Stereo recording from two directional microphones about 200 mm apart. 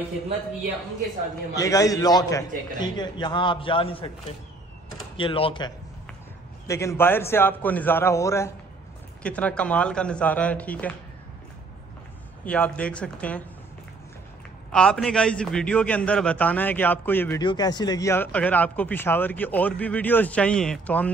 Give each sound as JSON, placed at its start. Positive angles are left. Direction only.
{"t": 1.5, "sound": "a man's voice", "side_deg": 15}
{"t": 5.1, "sound": "a man's voice", "side_deg": 25}
{"t": 6.7, "sound": "speech", "side_deg": 15}
{"t": 12.4, "sound": "speech", "side_deg": 5}
{"t": 14.7, "sound": "a man's voice", "side_deg": 5}
{"t": 17.4, "sound": "speech", "side_deg": 20}